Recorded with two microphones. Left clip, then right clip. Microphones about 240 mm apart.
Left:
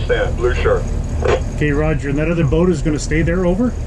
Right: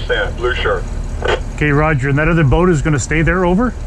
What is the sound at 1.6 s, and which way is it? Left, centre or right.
Speech, right.